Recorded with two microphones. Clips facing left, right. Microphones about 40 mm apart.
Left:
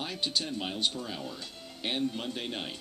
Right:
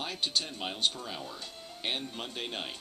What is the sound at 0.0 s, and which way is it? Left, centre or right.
Speech, centre.